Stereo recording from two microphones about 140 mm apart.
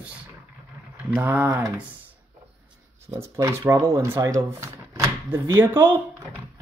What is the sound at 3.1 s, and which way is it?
Speech, 20° right (ahead or behind).